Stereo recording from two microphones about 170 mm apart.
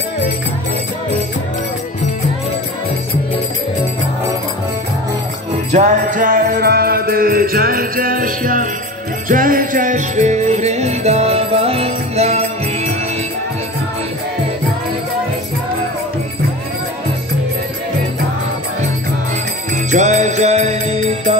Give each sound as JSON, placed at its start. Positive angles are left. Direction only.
{"t": 5.7, "sound": "music", "side_deg": -45}
{"t": 19.9, "sound": "music", "side_deg": -45}